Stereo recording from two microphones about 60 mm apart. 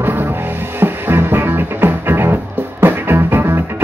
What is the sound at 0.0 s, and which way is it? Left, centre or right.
Music, right.